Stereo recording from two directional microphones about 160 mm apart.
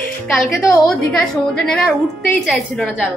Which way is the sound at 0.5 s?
15° left (ahead or behind).